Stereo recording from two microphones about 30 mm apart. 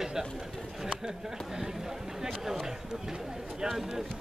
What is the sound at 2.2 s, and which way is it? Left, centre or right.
Speech, centre.